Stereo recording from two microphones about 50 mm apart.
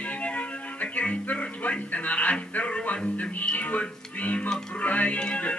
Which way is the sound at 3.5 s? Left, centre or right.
Left.